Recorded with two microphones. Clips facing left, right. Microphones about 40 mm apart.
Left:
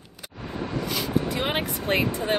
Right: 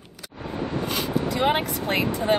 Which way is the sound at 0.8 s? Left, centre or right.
Right.